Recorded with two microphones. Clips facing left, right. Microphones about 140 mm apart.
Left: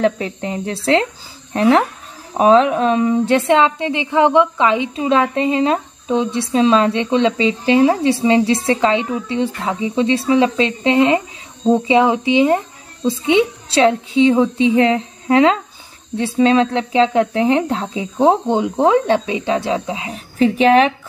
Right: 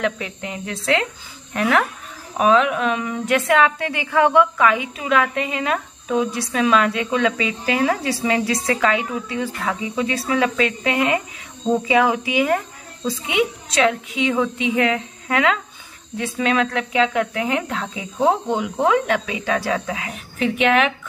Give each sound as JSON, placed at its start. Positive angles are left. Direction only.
{"t": 0.0, "sound": "a woman's voice", "side_deg": 35}